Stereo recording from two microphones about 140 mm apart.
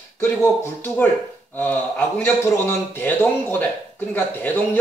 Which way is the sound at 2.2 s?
15° left (ahead or behind).